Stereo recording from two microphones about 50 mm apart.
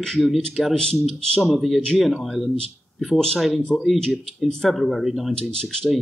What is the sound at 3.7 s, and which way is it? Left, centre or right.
Speech, centre.